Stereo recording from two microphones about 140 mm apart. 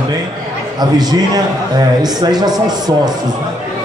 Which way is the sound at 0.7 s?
30° right (ahead or behind).